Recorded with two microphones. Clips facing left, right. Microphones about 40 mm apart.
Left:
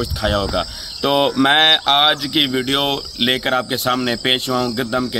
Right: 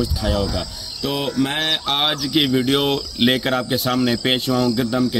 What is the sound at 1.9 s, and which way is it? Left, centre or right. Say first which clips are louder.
Speech: left 4 dB; left.